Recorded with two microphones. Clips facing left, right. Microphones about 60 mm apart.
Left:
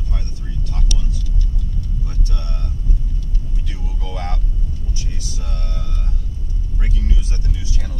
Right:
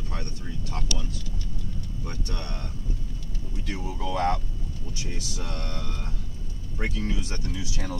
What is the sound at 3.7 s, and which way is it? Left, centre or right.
Vehicle, right.